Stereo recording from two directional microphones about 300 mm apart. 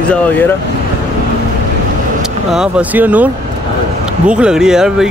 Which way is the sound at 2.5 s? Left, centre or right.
Centre.